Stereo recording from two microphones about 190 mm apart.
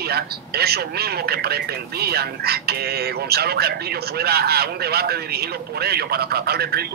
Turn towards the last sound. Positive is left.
turn(degrees=-55)  # may be behind; listen again after turning